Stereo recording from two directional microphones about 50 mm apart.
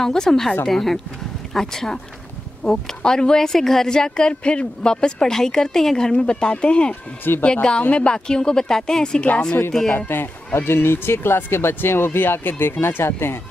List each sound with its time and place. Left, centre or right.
0.0 s a woman's voice: centre
7.3 s speech: left
7.9 s a woman's voice: centre
9.9 s speech: left